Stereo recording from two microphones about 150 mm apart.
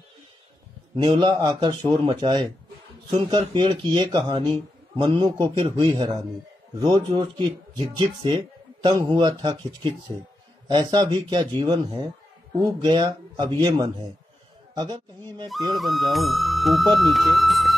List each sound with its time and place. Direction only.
0.9 s a man's voice: 30° right (ahead or behind)
15.7 s speech: centre (ahead or behind)